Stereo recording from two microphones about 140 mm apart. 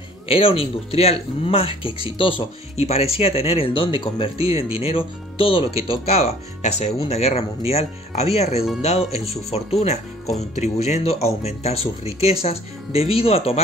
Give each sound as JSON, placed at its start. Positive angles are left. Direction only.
{"t": 0.3, "sound": "speech", "side_deg": 40}